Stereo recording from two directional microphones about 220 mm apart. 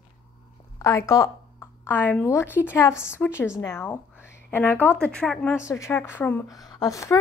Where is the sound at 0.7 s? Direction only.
15° left (ahead or behind).